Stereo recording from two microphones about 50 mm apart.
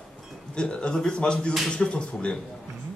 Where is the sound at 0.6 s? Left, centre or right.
Centre.